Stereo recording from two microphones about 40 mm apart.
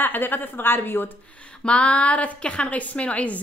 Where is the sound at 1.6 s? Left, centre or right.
Left.